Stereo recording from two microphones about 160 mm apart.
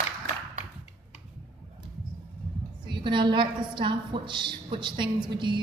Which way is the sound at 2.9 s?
30° right (ahead or behind).